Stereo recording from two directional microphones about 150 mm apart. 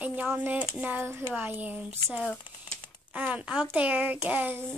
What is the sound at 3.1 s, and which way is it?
Speech, 10° right (ahead or behind).